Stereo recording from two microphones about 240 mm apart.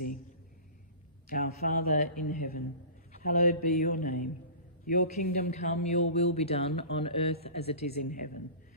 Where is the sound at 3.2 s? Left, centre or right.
Left.